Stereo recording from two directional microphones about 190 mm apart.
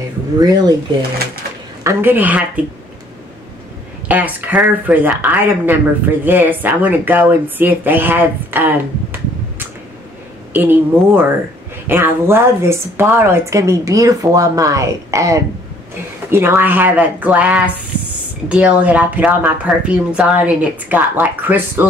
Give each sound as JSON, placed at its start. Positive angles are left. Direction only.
{"t": 0.4, "sound": "speech", "side_deg": -20}
{"t": 1.8, "sound": "speech", "side_deg": -15}
{"t": 4.1, "sound": "speech", "side_deg": -10}